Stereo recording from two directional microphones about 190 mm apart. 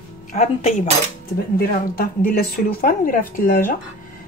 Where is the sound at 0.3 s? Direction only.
40° left (ahead or behind).